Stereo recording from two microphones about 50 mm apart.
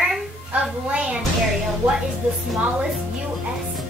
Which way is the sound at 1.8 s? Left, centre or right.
Right.